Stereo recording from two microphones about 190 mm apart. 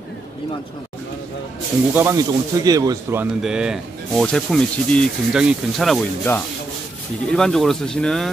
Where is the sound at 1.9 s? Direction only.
15° right (ahead or behind).